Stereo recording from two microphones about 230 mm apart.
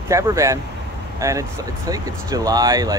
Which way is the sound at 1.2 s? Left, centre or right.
Centre.